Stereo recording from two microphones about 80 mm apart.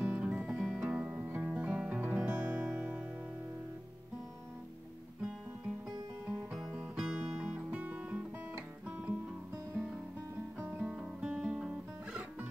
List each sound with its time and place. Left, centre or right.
0.0 s music: centre
0.6 s music: centre
0.8 s music: centre
5.2 s music: centre
10.8 s guitar: centre
11.5 s music: centre